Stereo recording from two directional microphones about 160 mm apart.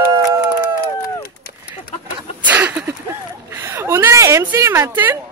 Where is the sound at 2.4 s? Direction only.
10° right (ahead or behind).